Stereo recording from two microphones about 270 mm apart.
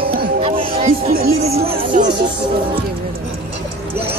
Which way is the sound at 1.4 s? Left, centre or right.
Right.